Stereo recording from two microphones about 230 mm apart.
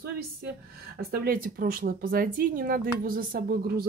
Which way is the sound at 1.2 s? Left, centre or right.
Right.